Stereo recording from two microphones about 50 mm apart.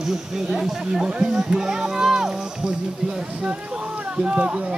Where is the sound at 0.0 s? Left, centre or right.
Centre.